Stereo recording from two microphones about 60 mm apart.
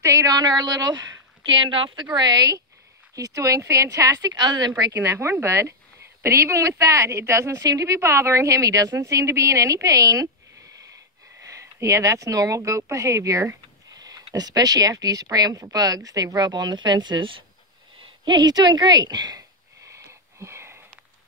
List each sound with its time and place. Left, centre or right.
0.0 s a woman's voice: right
2.0 s speech: right
3.2 s speech: right
5.0 s a woman's voice: right
11.4 s a woman's voice: right
13.9 s speech: right
18.5 s speech: right
19.9 s wheeze: right